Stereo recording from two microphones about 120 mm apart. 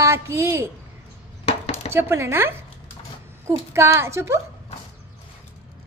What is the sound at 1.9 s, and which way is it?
Speech, 20° right (ahead or behind).